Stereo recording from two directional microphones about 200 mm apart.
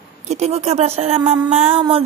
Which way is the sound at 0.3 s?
35° right (ahead or behind).